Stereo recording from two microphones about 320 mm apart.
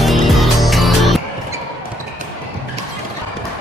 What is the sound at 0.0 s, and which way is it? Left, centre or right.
Music, centre.